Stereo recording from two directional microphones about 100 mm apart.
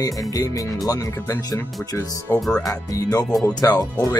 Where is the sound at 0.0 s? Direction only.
35° left (ahead or behind).